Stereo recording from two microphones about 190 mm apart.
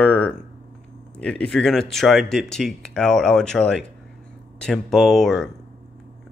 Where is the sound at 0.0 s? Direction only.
5° left (ahead or behind).